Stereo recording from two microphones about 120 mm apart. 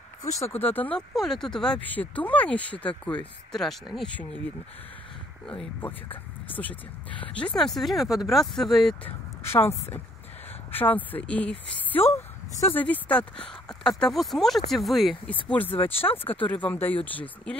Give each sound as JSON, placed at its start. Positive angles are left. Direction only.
{"t": 0.2, "sound": "speech", "side_deg": 25}
{"t": 4.1, "sound": "speech", "side_deg": 10}
{"t": 9.0, "sound": "speech", "side_deg": 20}
{"t": 15.4, "sound": "speech", "side_deg": 15}